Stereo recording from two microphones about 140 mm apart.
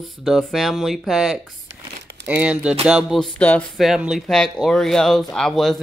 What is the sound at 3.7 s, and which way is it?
Speech, 5° right (ahead or behind).